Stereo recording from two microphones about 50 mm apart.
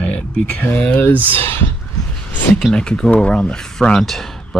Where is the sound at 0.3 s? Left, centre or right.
Left.